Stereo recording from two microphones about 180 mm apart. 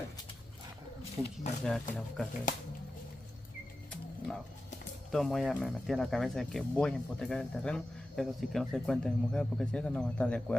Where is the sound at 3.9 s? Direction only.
Centre (ahead or behind).